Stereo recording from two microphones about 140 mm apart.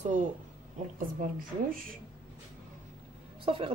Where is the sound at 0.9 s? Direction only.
90° right.